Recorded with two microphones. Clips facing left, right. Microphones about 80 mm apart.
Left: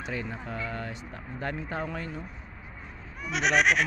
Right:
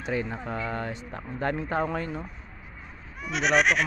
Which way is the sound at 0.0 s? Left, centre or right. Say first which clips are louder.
Right 5 dB; right.